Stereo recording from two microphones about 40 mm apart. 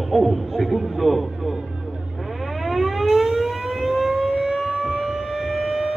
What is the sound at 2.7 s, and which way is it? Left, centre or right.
Siren, centre.